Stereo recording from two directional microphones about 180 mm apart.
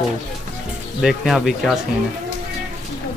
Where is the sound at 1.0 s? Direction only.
Centre (ahead or behind).